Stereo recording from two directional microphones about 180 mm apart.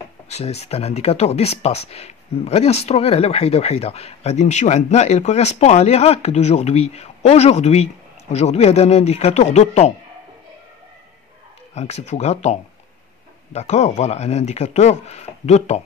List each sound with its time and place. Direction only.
0.3 s speech: 35° left (ahead or behind)
11.7 s speech: 40° left (ahead or behind)